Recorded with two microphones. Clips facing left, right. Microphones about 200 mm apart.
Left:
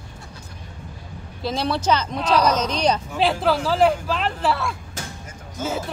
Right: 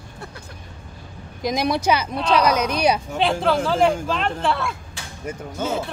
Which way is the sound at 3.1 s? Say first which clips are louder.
Even; centre (ahead or behind).